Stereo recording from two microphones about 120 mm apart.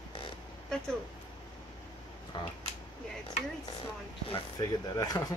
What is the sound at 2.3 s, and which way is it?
Speech, 40° left (ahead or behind).